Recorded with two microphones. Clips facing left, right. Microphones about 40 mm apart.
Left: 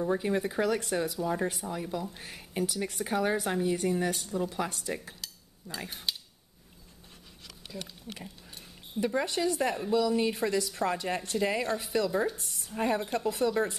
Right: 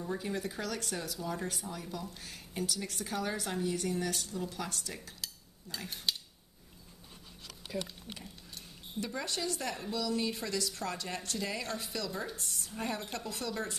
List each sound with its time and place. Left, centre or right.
0.0 s speech: left
5.9 s speech: centre
8.1 s speech: centre
9.0 s speech: left
12.3 s speech: centre